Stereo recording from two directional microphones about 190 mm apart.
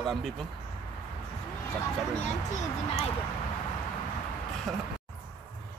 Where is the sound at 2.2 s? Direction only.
40° left (ahead or behind).